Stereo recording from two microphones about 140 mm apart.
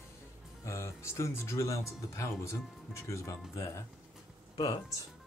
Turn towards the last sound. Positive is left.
turn(degrees=25)  # may be behind; listen again after turning